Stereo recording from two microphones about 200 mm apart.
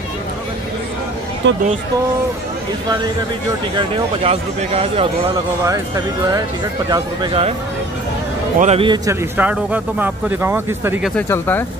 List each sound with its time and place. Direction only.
1.4 s speech: 65° right (ahead or behind)
3.7 s speech: 25° right (ahead or behind)
5.6 s a man's voice: 15° right (ahead or behind)
8.5 s a man's voice: 30° right (ahead or behind); by 11.1 s 10° right (ahead or behind)
11.1 s speech: 10° left (ahead or behind)